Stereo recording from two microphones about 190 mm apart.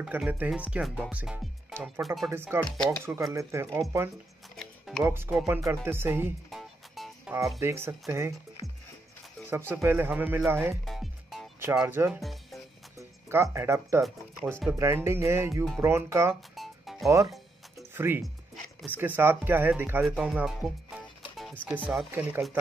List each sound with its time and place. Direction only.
0.0 s speech: 10° right (ahead or behind)
2.3 s speech: 10° right (ahead or behind)
4.6 s music: centre (ahead or behind)
5.0 s speech: 10° right (ahead or behind)
6.5 s music: centre (ahead or behind)
7.6 s speech: 10° right (ahead or behind)
8.6 s music: centre (ahead or behind)
9.5 s speech: 10° right (ahead or behind)
10.9 s music: centre (ahead or behind)
11.6 s speech: 10° right (ahead or behind)
12.2 s music: centre (ahead or behind)
12.9 s speech: 15° right (ahead or behind)
16.5 s music: centre (ahead or behind)
17.9 s speech: 10° right (ahead or behind)